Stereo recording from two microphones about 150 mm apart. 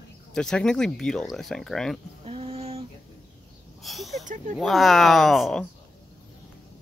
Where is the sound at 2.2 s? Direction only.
40° right (ahead or behind).